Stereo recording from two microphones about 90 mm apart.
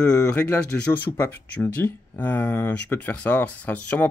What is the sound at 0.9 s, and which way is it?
Speech, 20° left (ahead or behind).